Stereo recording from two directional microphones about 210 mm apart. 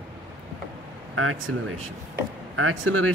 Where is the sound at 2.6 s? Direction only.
85° right.